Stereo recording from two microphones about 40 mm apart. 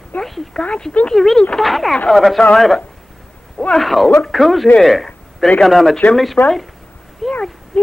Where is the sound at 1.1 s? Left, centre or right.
Centre.